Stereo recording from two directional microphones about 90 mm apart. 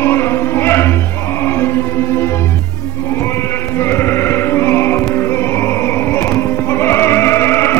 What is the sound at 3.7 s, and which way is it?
Music, 25° left (ahead or behind).